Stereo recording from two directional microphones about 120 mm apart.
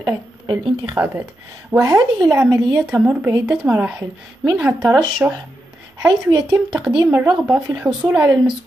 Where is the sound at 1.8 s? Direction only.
30° right (ahead or behind).